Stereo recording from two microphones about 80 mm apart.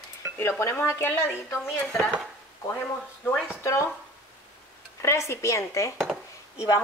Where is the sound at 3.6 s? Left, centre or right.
Left.